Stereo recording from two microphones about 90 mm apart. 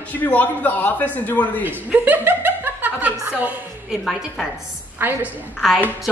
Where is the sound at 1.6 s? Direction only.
20° right (ahead or behind).